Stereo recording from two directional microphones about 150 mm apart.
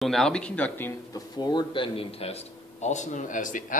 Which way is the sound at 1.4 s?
30° left (ahead or behind).